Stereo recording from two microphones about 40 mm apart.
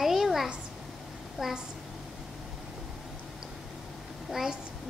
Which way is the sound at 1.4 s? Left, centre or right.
Centre.